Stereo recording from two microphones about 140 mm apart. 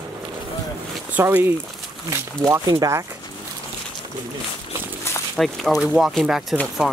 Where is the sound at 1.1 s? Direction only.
15° right (ahead or behind).